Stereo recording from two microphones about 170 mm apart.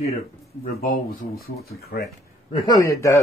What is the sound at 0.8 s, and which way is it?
Speech, 65° left (ahead or behind).